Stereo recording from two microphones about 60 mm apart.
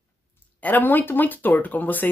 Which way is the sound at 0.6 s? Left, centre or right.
Left.